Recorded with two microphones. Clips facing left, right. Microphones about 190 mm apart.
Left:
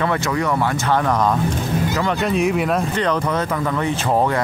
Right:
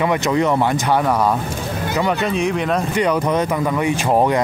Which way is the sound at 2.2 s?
Centre (ahead or behind).